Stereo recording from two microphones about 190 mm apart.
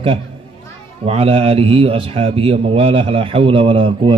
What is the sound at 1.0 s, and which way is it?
A man's voice, 30° right (ahead or behind).